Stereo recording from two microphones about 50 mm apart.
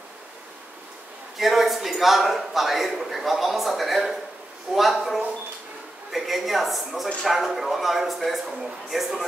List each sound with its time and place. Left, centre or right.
1.4 s a man's voice: centre